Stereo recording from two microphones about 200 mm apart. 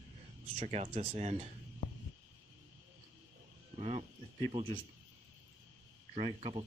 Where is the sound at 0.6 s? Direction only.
30° right (ahead or behind).